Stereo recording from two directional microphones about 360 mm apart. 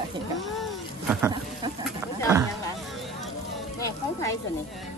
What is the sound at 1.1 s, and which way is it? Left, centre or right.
Speech, centre.